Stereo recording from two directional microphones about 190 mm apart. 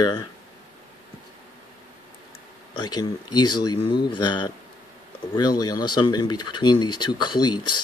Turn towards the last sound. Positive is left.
turn(degrees=25)  # may be behind; listen again after turning